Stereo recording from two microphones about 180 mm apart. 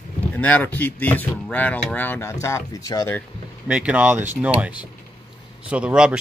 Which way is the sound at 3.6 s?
5° right (ahead or behind).